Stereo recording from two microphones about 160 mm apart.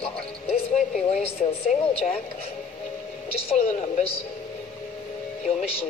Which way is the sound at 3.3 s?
35° left (ahead or behind).